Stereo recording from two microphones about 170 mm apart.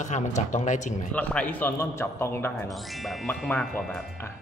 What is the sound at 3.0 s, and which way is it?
Speech, 5° left (ahead or behind).